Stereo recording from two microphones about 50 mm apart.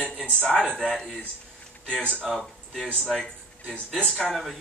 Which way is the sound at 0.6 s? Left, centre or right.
Centre.